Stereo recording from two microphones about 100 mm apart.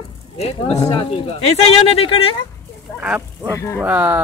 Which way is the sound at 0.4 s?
90° left.